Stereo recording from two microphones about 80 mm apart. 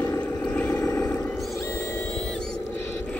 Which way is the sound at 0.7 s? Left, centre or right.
Left.